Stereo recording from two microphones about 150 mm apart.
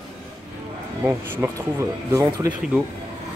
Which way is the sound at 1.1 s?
20° right (ahead or behind).